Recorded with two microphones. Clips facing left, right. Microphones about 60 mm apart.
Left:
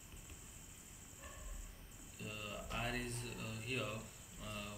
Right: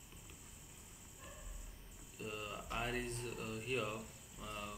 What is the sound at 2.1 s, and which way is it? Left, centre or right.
Speech, centre.